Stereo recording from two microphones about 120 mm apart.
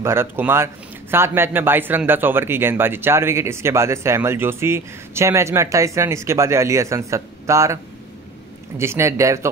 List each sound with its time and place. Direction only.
0.0 s a man's voice: 20° right (ahead or behind)